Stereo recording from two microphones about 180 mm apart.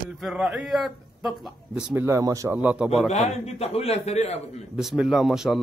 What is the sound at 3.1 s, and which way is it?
A man's voice, 35° left (ahead or behind).